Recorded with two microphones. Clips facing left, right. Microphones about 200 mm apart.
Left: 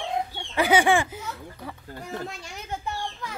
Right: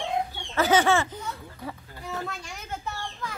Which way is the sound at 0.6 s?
15° left (ahead or behind).